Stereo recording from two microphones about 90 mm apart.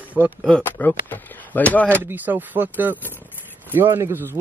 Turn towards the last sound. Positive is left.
turn(degrees=-25)  # may be behind; listen again after turning